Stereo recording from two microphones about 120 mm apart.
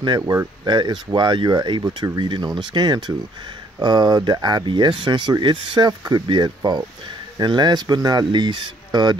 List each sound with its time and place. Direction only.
0.2 s speech: 25° right (ahead or behind)
0.7 s speech: 40° right (ahead or behind)